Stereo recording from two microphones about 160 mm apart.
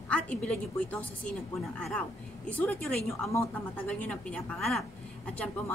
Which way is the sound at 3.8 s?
5° left (ahead or behind).